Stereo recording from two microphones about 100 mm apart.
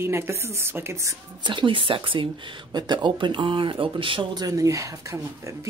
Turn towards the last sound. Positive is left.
turn(degrees=-30)  # may be behind; listen again after turning